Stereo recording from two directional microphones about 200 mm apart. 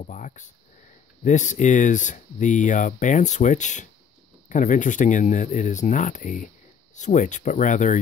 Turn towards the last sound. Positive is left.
turn(degrees=40)  # may be behind; listen again after turning